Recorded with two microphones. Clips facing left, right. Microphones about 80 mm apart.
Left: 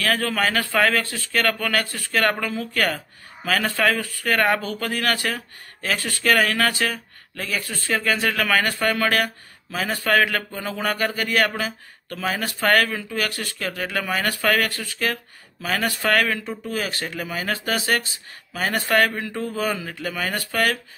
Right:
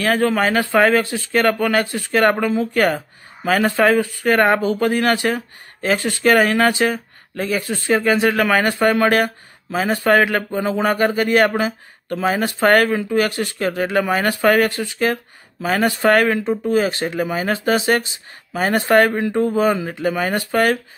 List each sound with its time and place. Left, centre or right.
0.0 s speech: right